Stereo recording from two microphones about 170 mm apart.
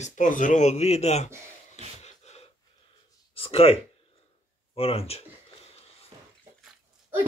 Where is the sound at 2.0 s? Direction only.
40° left (ahead or behind).